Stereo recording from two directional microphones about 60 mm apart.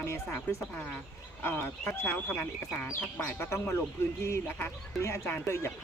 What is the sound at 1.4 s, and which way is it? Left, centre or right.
Speech, left.